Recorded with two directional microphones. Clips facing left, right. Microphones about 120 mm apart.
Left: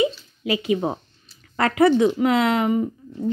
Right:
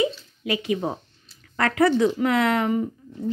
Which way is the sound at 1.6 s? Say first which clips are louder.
Left 3 dB; 20° left (ahead or behind).